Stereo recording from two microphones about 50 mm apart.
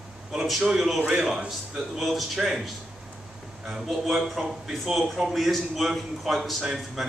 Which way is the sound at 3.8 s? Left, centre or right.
Centre.